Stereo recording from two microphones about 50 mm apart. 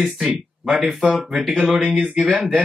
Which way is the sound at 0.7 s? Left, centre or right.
Centre.